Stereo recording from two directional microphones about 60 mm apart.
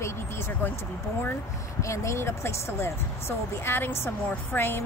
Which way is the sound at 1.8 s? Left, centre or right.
Left.